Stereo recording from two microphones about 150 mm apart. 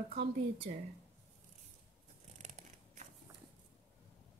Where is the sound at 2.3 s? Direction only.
50° right (ahead or behind).